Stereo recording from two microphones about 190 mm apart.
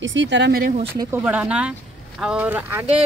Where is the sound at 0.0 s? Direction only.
75° right (ahead or behind); by 0.7 s 55° right (ahead or behind).